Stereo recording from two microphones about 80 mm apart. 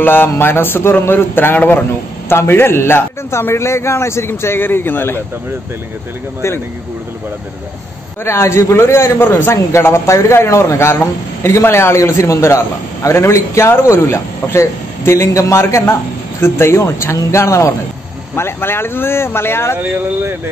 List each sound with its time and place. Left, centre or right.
0.0 s a man's voice: left
8.2 s a man's voice: left
19.8 s speech: right